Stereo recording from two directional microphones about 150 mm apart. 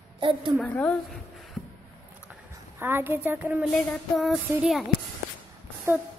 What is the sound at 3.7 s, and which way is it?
Speech, 5° left (ahead or behind).